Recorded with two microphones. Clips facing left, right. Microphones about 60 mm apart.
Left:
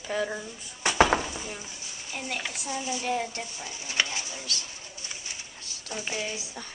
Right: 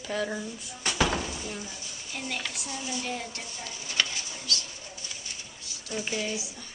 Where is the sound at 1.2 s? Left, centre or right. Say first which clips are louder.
Even; centre.